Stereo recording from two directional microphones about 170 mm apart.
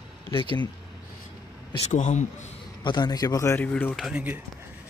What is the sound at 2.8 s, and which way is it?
Speech, 25° left (ahead or behind).